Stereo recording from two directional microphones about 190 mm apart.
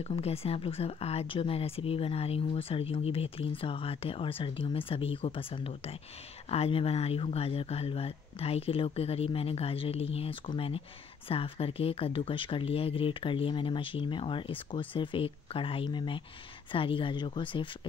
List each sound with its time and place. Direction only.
0.0 s speech: 30° left (ahead or behind)